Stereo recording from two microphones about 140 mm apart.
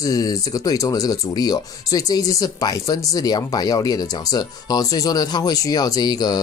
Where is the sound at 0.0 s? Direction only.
25° left (ahead or behind).